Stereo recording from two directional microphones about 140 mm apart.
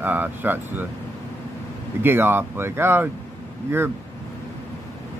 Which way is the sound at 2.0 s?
15° right (ahead or behind).